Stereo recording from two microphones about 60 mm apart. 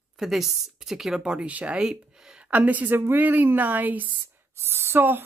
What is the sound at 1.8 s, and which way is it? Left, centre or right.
Speech, centre.